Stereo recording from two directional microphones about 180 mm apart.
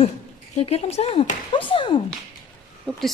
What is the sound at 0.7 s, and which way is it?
Speech, 35° left (ahead or behind).